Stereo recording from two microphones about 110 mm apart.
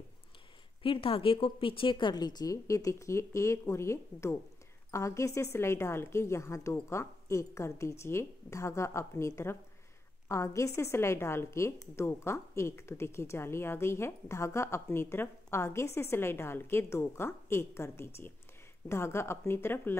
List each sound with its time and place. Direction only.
0.8 s a woman's voice: 55° left (ahead or behind); by 20.0 s 20° left (ahead or behind)